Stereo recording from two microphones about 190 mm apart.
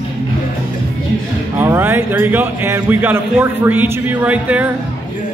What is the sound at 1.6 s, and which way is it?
A man's voice, 10° right (ahead or behind).